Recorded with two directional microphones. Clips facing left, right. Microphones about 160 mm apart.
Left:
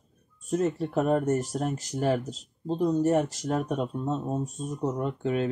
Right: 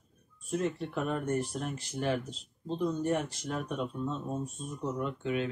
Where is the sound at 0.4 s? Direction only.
40° left (ahead or behind).